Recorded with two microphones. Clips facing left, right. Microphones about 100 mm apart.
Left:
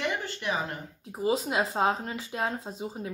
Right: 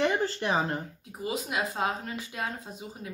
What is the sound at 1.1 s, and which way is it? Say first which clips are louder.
Speech: left 5 dB; 30° left (ahead or behind).